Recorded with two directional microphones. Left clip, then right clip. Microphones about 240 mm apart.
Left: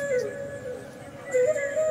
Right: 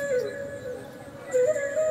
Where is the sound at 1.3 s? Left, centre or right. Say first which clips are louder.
Even; centre.